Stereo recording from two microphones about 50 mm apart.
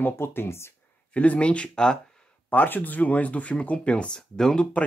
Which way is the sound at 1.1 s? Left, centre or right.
Left.